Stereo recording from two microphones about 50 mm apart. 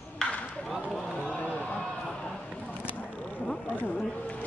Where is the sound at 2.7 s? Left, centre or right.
Left.